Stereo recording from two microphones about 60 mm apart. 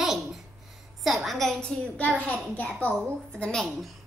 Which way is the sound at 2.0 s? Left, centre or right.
Left.